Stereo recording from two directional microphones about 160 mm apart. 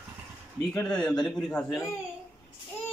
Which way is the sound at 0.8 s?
5° left (ahead or behind).